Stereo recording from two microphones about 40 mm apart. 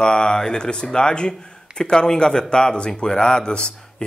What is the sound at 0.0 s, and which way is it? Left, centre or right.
Speech, left.